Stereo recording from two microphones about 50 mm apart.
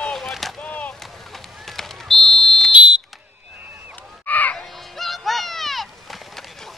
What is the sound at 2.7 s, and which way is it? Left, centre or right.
Fire alarm, right.